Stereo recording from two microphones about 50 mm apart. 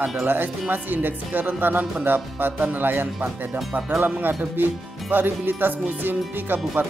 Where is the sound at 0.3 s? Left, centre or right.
Right.